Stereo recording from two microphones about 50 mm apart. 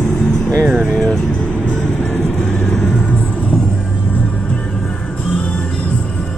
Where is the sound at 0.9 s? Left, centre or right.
Centre.